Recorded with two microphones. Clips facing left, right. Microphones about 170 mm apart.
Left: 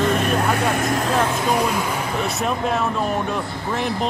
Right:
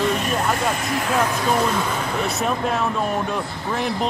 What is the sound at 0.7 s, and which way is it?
Speech, 45° left (ahead or behind).